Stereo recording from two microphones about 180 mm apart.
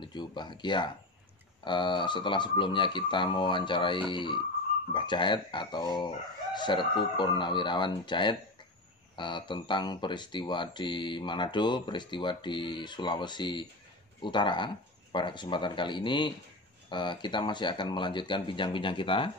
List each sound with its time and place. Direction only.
0.0 s speech: 25° left (ahead or behind)